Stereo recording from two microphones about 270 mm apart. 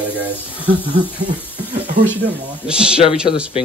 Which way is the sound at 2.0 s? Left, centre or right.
Centre.